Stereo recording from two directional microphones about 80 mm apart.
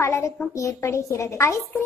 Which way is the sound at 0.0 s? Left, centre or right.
Left.